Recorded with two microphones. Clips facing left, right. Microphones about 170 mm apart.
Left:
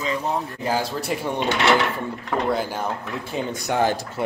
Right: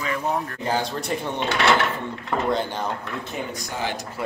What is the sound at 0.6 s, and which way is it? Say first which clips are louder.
Speech: left 1 dB; 5° left (ahead or behind).